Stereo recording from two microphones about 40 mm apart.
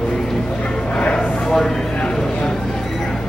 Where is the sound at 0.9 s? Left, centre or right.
Left.